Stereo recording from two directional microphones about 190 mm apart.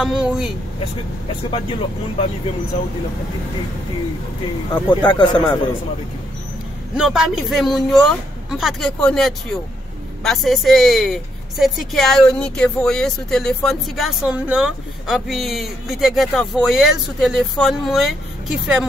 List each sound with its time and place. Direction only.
0.0 s a woman's voice: 5° right (ahead or behind)
1.5 s speech: 30° left (ahead or behind)
4.8 s speech: 25° left (ahead or behind)
7.0 s a woman's voice: centre (ahead or behind)